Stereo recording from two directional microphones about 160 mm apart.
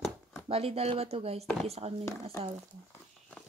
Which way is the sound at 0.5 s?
40° right (ahead or behind).